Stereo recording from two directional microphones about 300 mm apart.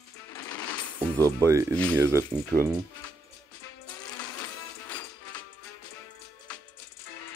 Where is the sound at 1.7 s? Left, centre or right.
Centre.